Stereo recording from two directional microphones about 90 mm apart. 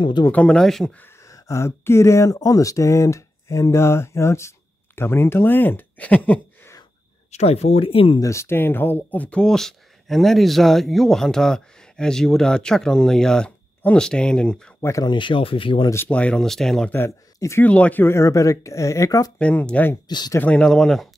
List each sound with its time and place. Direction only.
0.3 s speech: 10° left (ahead or behind)
1.2 s speech: 35° left (ahead or behind); by 6.7 s 20° left (ahead or behind)
7.8 s speech: 90° left
8.2 s speech: 30° left (ahead or behind); by 14.7 s 10° left (ahead or behind)
14.8 s speech: 35° left (ahead or behind)
15.0 s speech: 65° left (ahead or behind)
16.1 s speech: 15° left (ahead or behind)
16.9 s a man's voice: 30° left (ahead or behind)
17.6 s speech: 15° left (ahead or behind); by 19.3 s 35° left (ahead or behind)
19.3 s speech: 15° left (ahead or behind)
20.1 s speech: 55° left (ahead or behind)
20.3 s speech: 15° left (ahead or behind)